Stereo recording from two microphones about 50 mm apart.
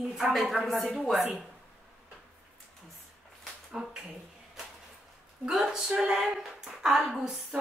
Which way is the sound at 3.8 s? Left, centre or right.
Centre.